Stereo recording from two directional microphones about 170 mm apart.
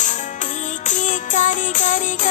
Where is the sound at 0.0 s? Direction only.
45° left (ahead or behind).